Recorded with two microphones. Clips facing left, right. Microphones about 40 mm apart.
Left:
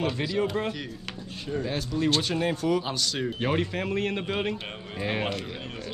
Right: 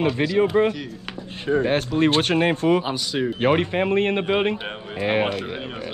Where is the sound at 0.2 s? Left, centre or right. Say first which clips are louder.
Right 8 dB; right.